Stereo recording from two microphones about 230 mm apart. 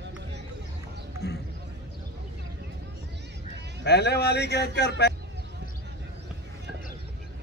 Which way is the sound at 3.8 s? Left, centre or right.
Left.